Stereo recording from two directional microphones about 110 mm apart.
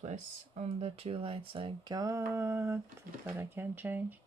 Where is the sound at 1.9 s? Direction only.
30° right (ahead or behind).